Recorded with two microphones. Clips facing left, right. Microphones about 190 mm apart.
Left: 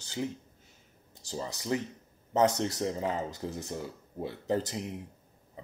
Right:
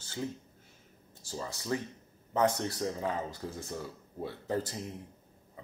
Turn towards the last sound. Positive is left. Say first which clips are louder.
# left 3 dB
turn(degrees=20)  # may be behind; listen again after turning